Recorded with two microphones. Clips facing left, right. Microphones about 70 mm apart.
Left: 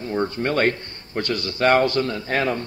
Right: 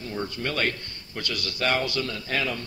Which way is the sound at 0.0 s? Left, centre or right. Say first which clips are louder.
Left 7 dB; left.